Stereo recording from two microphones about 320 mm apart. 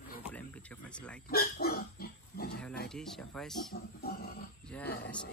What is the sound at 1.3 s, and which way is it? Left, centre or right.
Speech, left.